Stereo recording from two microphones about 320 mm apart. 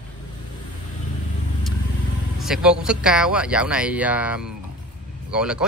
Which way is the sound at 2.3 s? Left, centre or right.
Centre.